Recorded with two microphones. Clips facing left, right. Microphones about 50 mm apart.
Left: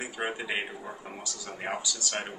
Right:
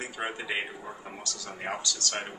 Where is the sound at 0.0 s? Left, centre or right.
Centre.